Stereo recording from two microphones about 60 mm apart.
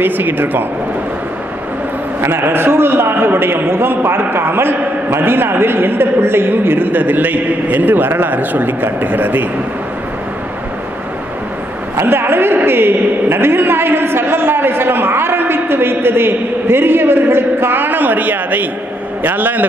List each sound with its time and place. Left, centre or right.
0.0 s a man's voice: right
2.2 s a man's voice: right
12.0 s a man's voice: right